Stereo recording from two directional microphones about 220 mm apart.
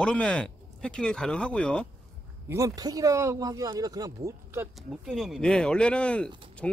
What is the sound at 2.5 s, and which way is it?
Speech, 15° right (ahead or behind).